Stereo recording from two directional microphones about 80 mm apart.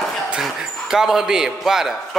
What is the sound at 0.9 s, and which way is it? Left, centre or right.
Speech, centre.